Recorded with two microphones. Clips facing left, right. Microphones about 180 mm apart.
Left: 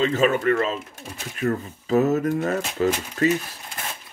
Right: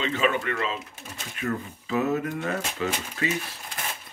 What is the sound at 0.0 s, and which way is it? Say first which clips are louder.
Speech: left 6 dB; 40° left (ahead or behind).